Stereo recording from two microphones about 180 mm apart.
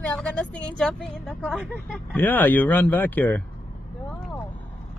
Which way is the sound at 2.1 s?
10° left (ahead or behind).